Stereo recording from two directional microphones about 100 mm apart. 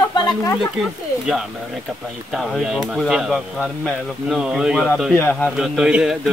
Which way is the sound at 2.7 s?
5° right (ahead or behind).